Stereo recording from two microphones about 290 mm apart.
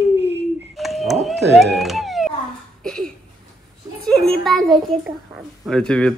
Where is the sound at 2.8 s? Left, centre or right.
Centre.